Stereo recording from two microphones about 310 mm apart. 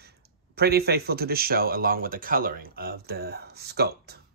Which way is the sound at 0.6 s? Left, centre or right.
Right.